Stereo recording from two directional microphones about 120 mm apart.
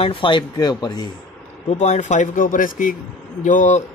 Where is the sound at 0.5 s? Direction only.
35° left (ahead or behind).